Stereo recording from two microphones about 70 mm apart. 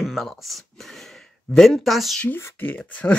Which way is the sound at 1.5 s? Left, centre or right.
Centre.